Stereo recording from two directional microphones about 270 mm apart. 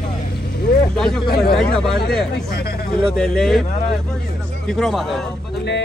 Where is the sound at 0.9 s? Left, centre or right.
Centre.